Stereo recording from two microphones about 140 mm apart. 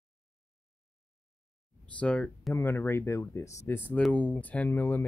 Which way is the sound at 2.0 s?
10° left (ahead or behind).